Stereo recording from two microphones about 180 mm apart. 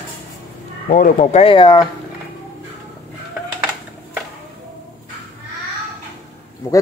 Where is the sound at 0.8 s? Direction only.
50° left (ahead or behind); by 1.9 s 25° left (ahead or behind).